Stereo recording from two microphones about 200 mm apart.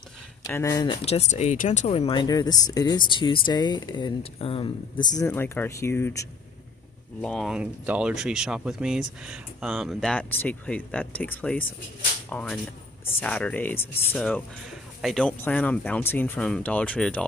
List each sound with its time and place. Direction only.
0.4 s speech: 15° left (ahead or behind)
5.2 s speech: 10° left (ahead or behind)